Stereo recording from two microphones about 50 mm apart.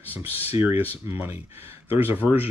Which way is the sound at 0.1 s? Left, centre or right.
Right.